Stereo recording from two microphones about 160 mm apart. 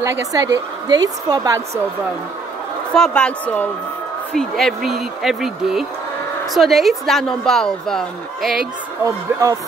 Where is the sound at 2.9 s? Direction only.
5° left (ahead or behind).